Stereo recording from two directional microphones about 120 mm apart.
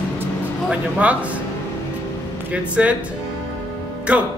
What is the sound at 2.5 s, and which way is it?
Speech, 10° right (ahead or behind).